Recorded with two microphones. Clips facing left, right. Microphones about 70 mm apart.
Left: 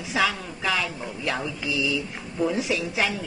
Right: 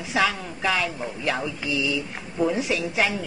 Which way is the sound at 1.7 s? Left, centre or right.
Right.